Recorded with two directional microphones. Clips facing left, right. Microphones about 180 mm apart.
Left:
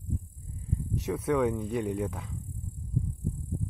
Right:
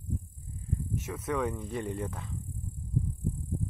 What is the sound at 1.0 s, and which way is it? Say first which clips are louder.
Speech: left 6 dB; 5° left (ahead or behind).